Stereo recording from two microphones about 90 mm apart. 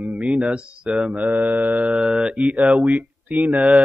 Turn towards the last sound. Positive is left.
turn(degrees=-15)  # may be behind; listen again after turning